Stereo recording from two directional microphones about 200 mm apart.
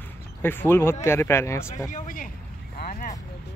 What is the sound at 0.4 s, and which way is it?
Speech, 10° left (ahead or behind).